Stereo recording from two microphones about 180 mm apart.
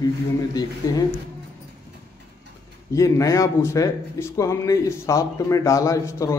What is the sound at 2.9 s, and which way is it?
Speech, 20° left (ahead or behind).